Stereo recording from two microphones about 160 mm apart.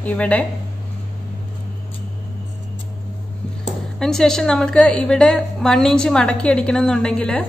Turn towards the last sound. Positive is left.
turn(degrees=5)  # may be behind; listen again after turning